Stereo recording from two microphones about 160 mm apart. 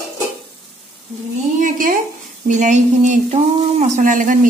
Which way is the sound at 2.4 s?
50° right (ahead or behind).